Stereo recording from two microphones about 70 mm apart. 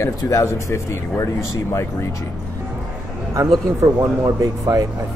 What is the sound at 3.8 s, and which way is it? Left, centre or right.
Speech, right.